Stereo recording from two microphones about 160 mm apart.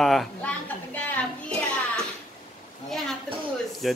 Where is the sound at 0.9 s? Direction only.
10° left (ahead or behind).